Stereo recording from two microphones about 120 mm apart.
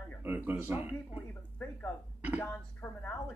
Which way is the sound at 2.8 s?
20° left (ahead or behind).